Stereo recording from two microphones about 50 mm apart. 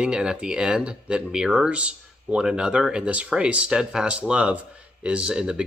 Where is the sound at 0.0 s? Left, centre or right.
Centre.